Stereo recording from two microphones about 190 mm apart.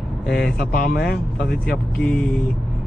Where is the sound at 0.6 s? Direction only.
50° left (ahead or behind).